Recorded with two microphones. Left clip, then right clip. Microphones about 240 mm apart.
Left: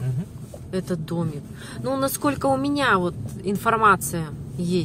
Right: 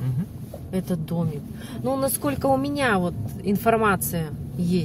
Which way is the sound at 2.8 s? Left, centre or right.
Centre.